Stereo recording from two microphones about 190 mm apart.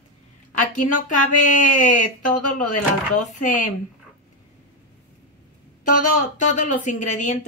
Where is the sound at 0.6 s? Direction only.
40° left (ahead or behind).